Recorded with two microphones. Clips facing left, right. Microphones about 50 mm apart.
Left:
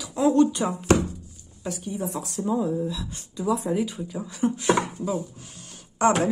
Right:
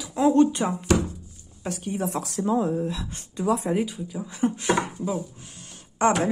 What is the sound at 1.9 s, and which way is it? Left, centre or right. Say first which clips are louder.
Speech: right 4 dB; right.